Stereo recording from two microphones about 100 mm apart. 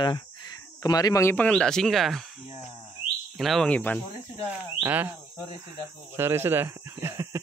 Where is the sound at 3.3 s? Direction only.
Centre (ahead or behind).